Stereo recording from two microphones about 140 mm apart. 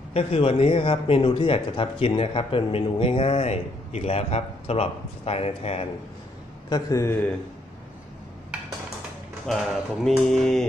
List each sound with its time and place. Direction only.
0.1 s a man's voice: 45° left (ahead or behind)
6.7 s a man's voice: 20° left (ahead or behind)
10.0 s mantra: centre (ahead or behind)